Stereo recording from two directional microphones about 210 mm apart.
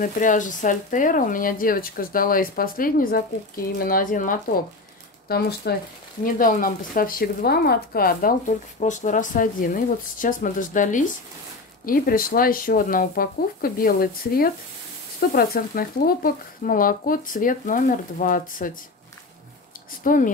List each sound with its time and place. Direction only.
0.0 s speech: 40° left (ahead or behind)
20.0 s speech: 40° left (ahead or behind)